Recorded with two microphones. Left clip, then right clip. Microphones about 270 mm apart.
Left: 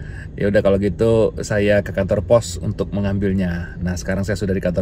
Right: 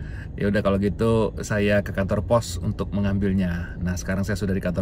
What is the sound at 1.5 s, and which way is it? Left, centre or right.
Speech, left.